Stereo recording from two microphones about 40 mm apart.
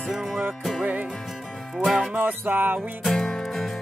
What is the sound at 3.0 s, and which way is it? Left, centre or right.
Music, centre.